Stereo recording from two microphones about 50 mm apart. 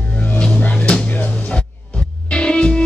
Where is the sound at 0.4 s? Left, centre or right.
Left.